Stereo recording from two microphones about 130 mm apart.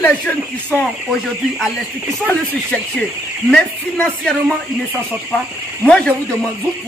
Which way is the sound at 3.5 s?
5° left (ahead or behind).